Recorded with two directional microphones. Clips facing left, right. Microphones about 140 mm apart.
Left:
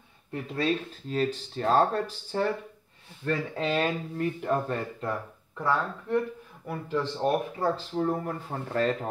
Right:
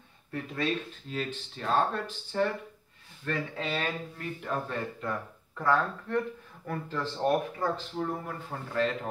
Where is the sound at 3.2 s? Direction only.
30° left (ahead or behind).